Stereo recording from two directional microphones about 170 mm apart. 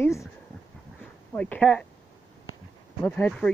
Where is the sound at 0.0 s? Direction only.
15° left (ahead or behind).